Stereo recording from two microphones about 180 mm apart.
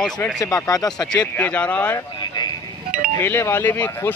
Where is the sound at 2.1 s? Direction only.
25° left (ahead or behind).